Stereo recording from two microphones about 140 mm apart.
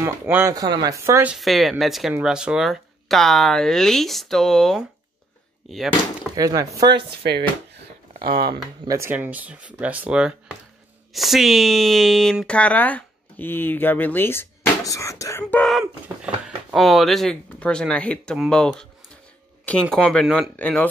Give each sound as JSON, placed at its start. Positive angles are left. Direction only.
{"t": 0.0, "sound": "speech", "side_deg": -15}
{"t": 1.3, "sound": "speech", "side_deg": 0}
{"t": 6.3, "sound": "speech", "side_deg": -25}
{"t": 8.2, "sound": "speech", "side_deg": -90}
{"t": 8.8, "sound": "speech", "side_deg": -20}
{"t": 16.4, "sound": "speech", "side_deg": 0}
{"t": 20.5, "sound": "speech", "side_deg": 10}